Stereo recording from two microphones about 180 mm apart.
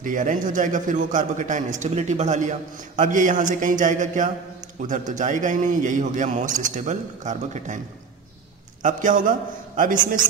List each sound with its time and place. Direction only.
0.0 s a man's voice: 45° right (ahead or behind)
8.8 s a man's voice: 45° right (ahead or behind)